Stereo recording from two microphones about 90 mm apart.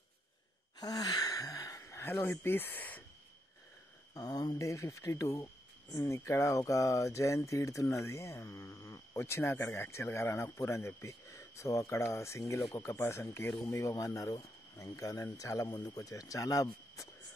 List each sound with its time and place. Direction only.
0.7 s a sound: 45° left (ahead or behind); by 2.3 s 25° left (ahead or behind)
2.4 s speech: 25° left (ahead or behind)
4.1 s speech: 45° left (ahead or behind)